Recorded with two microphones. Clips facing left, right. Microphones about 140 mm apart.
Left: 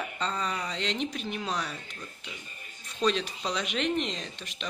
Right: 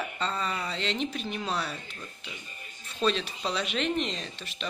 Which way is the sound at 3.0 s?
15° left (ahead or behind).